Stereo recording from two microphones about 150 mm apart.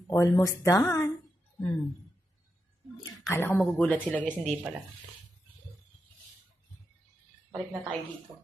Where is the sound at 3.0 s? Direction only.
15° left (ahead or behind).